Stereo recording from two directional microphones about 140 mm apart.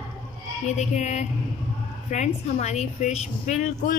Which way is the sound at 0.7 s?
55° left (ahead or behind).